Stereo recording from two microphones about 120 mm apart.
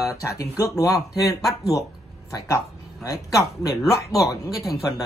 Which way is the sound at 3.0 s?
30° left (ahead or behind).